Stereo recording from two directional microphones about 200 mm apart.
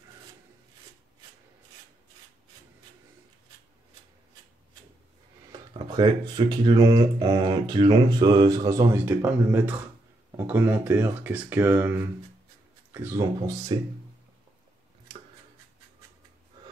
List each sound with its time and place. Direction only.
5.7 s speech: 25° right (ahead or behind)